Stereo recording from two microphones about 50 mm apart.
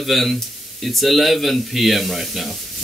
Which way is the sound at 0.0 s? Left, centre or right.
Centre.